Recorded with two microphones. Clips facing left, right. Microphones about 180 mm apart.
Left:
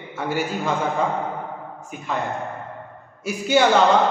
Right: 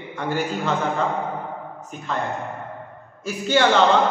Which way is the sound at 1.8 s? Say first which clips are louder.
Left 1 dB; 10° left (ahead or behind).